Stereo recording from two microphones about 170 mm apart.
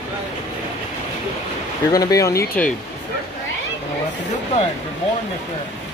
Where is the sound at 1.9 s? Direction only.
20° left (ahead or behind).